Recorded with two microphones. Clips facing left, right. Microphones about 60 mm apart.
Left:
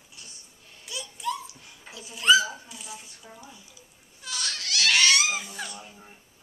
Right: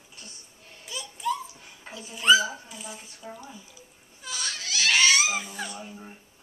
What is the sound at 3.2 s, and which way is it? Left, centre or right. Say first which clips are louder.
Speech: right 10 dB; centre.